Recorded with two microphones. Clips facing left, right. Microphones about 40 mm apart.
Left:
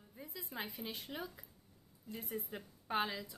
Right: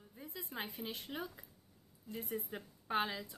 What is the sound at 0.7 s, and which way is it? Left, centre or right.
A woman's voice, centre.